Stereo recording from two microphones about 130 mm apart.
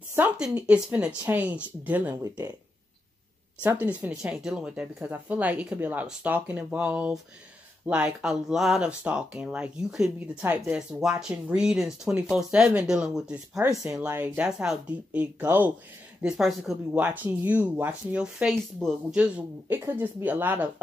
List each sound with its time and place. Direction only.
0.4 s speech: 10° right (ahead or behind)
2.2 s speech: 25° right (ahead or behind)
3.8 s speech: 10° right (ahead or behind)
13.6 s speech: 20° right (ahead or behind)